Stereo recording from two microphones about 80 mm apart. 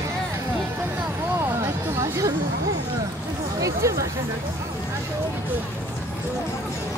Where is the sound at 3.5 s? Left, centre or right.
Right.